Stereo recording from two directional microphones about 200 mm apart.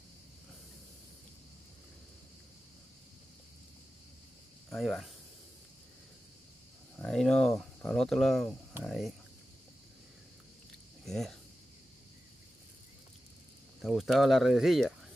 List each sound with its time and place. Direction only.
4.6 s speech: centre (ahead or behind)
7.0 s speech: 5° left (ahead or behind)
11.1 s speech: centre (ahead or behind)
13.7 s speech: centre (ahead or behind)